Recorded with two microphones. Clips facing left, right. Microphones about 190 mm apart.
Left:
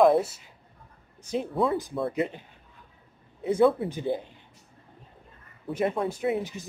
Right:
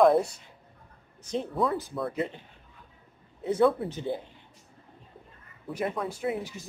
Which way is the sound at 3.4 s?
5° left (ahead or behind).